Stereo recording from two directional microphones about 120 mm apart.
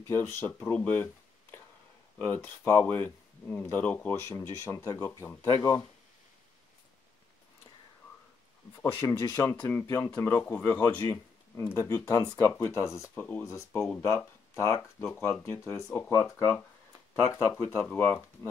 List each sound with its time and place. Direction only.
0.0 s speech: 20° left (ahead or behind)
4.2 s speech: 25° left (ahead or behind)
8.8 s speech: 20° left (ahead or behind)
13.1 s speech: 15° left (ahead or behind)
13.5 s speech: 25° left (ahead or behind)